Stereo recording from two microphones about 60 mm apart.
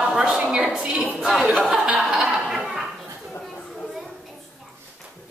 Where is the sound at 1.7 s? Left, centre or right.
Centre.